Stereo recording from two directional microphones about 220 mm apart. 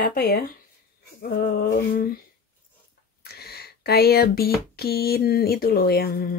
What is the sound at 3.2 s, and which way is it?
Speech, 45° left (ahead or behind).